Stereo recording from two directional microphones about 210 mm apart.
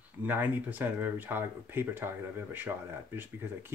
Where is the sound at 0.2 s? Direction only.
10° right (ahead or behind).